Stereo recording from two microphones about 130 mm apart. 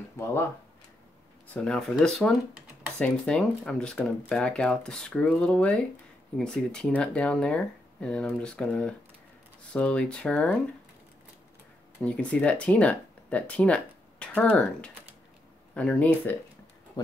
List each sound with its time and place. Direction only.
0.2 s speech: 20° left (ahead or behind)
1.5 s speech: 5° left (ahead or behind)
12.0 s speech: 10° left (ahead or behind)